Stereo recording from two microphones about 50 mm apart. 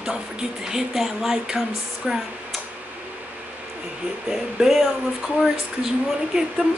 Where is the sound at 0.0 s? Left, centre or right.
Centre.